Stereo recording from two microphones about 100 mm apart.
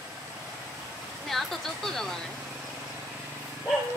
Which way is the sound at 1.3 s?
Centre (ahead or behind).